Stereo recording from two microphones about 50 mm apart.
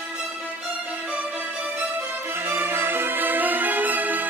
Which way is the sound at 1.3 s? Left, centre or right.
Right.